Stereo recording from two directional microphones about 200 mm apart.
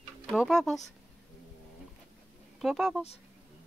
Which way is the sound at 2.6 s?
Centre (ahead or behind).